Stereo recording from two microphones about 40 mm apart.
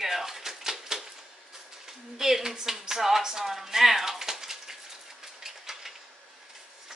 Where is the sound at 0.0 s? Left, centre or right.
Centre.